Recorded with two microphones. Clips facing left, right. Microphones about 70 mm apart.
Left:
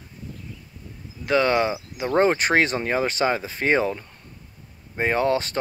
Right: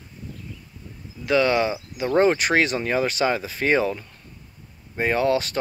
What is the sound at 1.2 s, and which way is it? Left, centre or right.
Speech, left.